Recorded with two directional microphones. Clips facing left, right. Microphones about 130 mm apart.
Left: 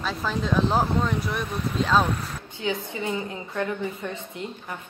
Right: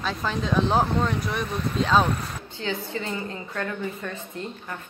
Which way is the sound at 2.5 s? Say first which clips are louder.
Left 1 dB; 15° left (ahead or behind).